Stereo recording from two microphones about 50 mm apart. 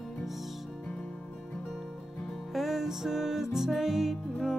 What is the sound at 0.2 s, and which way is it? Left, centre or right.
Music, centre.